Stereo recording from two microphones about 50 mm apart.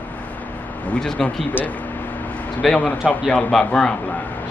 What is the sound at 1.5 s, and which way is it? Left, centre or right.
Speech, left.